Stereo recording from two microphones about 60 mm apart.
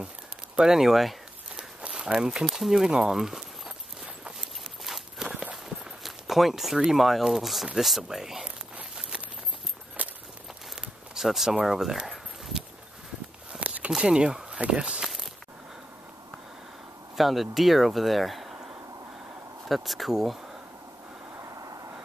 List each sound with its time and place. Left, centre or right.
0.6 s speech: centre
1.6 s walk: centre
2.1 s speech: centre
4.8 s walk: centre
5.3 s walk: centre
6.0 s speech: centre
10.0 s walk: right
11.1 s speech: centre
13.5 s walk: right
13.9 s speech: centre
17.2 s speech: centre
19.7 s speech: centre
21.4 s train: right